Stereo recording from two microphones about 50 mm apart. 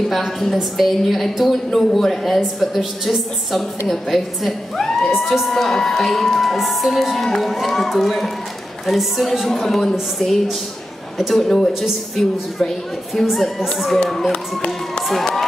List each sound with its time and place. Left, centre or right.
0.1 s a woman's voice: centre
5.5 s a woman's voice: centre
11.1 s a woman's voice: centre
14.0 s music: centre
14.3 s music: centre
15.0 s music: centre